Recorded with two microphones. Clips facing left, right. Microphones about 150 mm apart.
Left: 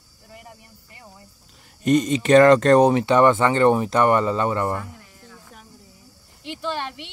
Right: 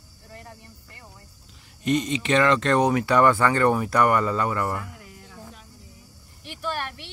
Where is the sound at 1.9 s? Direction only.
45° left (ahead or behind).